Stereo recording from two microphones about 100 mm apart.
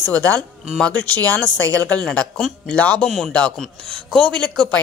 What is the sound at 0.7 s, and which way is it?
A man's voice, 15° left (ahead or behind).